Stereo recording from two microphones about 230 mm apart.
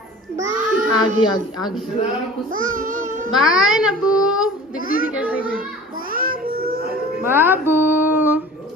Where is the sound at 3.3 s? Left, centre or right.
Centre.